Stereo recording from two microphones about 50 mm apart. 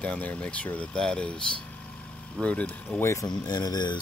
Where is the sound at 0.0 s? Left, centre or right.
Left.